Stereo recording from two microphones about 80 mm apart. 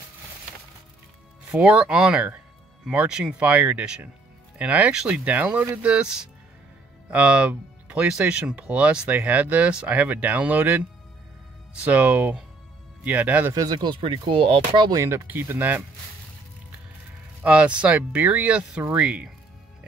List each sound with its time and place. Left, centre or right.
1.5 s speech: centre
13.7 s speech: right
14.9 s speech: right
15.2 s speech: right
17.4 s speech: centre